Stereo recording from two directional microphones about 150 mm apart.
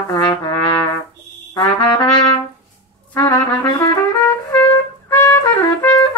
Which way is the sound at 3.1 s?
20° left (ahead or behind).